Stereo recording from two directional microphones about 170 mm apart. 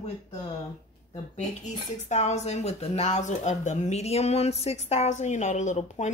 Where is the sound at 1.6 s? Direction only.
45° left (ahead or behind).